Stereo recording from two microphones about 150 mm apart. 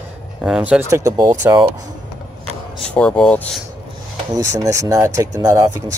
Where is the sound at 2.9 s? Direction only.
5° left (ahead or behind).